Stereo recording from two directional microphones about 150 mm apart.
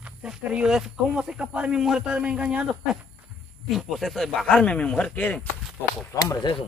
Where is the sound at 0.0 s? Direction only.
5° right (ahead or behind); by 5.5 s 10° left (ahead or behind).